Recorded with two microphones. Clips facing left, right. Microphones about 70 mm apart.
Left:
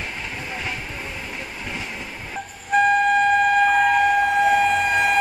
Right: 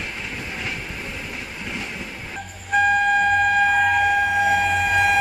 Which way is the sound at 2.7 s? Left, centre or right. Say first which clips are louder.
Left 1 dB; centre.